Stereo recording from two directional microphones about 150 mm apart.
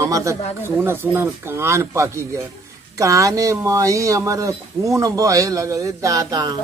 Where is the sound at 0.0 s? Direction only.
20° right (ahead or behind).